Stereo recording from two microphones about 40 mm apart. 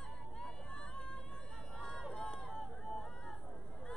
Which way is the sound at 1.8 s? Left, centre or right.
Centre.